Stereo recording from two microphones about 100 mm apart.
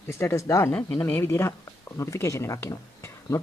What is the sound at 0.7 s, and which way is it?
Speech, 15° left (ahead or behind).